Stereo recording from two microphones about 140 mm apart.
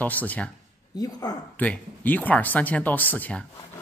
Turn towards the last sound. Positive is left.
turn(degrees=10)  # may be behind; listen again after turning